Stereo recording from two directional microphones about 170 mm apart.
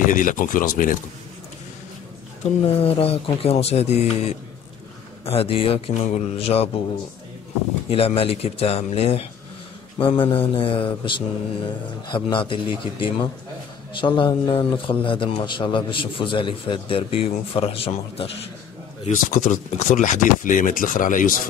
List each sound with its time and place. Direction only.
0.0 s speech: 50° left (ahead or behind)
2.8 s a man's voice: 35° left (ahead or behind)
7.9 s a man's voice: 35° left (ahead or behind)
19.0 s speech: 45° left (ahead or behind)